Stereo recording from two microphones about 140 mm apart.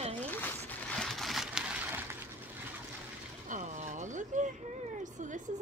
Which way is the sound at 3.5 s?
60° right (ahead or behind).